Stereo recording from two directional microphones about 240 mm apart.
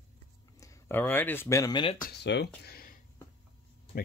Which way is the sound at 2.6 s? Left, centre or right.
Left.